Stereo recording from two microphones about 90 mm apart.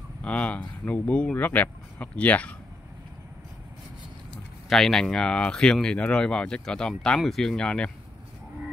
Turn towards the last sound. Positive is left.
turn(degrees=10)  # may be behind; listen again after turning